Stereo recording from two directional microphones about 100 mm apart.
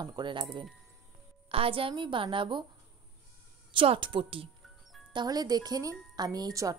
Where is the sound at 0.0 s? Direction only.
50° right (ahead or behind).